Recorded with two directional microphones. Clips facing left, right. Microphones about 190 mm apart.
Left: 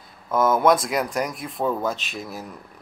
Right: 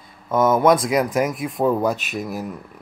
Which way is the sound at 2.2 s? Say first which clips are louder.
Right 6 dB; 15° right (ahead or behind).